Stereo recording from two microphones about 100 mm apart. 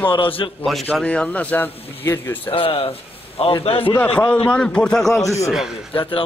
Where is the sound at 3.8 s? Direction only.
15° left (ahead or behind).